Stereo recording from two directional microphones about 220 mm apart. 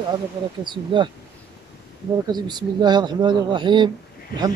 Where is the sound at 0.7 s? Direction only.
20° right (ahead or behind).